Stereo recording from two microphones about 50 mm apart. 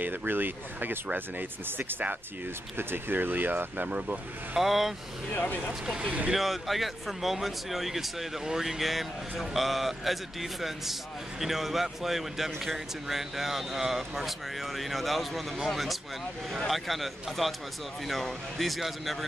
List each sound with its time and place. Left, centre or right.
0.3 s speech: right
3.8 s speech: right
4.6 s speech: centre
5.9 s speech: right
6.3 s speech: centre